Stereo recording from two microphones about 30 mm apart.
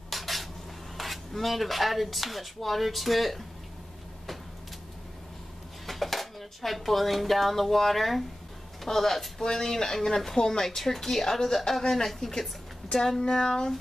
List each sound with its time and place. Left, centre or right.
0.1 s dishes: centre
0.9 s speech: centre
5.9 s a woman's voice: centre; by 13.7 s left